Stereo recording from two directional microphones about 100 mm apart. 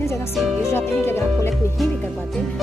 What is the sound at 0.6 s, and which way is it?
Speech, 25° left (ahead or behind).